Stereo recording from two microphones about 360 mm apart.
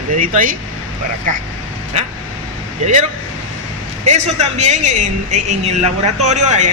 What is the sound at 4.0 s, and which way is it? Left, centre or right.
A man's voice, centre.